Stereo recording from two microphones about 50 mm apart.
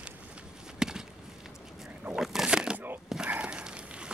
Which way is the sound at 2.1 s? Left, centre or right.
Centre.